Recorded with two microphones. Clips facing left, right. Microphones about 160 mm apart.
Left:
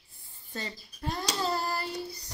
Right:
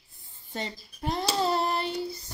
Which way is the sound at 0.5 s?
25° right (ahead or behind).